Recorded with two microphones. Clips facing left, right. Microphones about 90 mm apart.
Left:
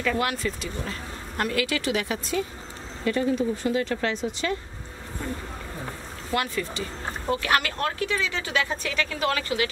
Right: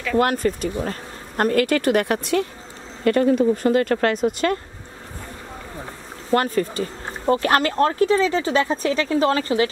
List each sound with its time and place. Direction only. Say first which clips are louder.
0.2 s speech: right 8 dB; 45° right (ahead or behind)
6.3 s speech: right 8 dB; 40° right (ahead or behind)